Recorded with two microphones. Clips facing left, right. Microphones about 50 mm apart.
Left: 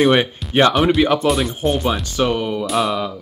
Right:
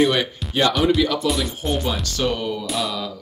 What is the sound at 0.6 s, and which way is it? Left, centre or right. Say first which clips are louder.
Speech: left 4 dB; left.